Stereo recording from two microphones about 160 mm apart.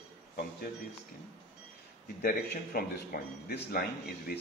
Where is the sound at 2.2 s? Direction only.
65° left (ahead or behind).